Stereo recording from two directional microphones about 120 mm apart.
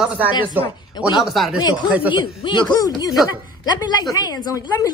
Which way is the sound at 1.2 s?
Centre (ahead or behind).